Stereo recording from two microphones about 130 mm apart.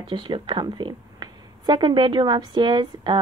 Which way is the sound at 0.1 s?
40° right (ahead or behind).